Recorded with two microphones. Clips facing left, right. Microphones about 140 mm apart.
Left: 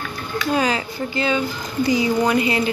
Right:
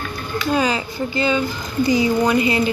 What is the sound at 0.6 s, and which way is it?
Speech, centre (ahead or behind).